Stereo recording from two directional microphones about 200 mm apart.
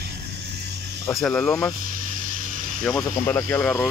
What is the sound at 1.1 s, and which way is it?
Speech, centre (ahead or behind).